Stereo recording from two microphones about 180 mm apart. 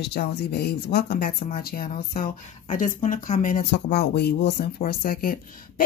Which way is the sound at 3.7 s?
65° left (ahead or behind).